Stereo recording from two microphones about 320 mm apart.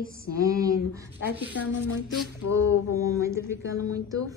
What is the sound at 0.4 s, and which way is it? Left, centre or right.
Speech, centre.